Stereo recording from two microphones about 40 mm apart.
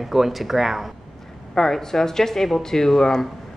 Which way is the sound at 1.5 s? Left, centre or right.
Centre.